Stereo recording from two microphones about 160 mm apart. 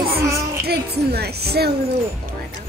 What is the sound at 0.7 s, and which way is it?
A woman's voice, 85° right.